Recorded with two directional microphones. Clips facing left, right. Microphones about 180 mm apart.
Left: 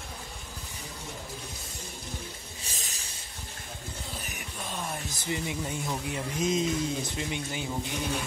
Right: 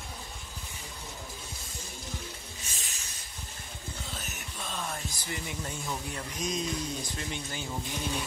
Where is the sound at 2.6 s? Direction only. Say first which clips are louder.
Left 3 dB; 40° left (ahead or behind).